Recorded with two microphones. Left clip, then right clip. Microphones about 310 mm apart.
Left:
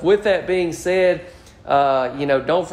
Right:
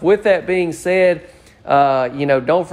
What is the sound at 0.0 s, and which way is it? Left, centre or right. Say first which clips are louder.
Speech: right 3 dB; centre.